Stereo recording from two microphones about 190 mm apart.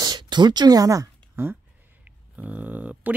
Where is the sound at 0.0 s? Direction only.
20° right (ahead or behind).